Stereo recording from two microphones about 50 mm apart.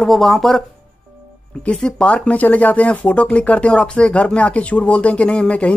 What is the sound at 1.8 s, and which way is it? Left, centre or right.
Speech, centre.